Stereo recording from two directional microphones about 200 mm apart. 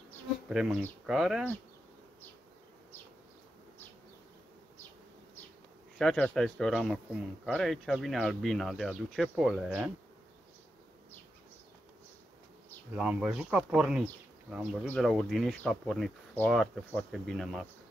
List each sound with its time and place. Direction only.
0.5 s speech: centre (ahead or behind)
5.9 s speech: 5° left (ahead or behind)
12.9 s speech: 5° right (ahead or behind)